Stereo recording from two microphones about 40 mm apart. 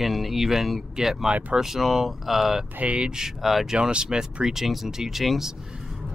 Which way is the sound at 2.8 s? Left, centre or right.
Right.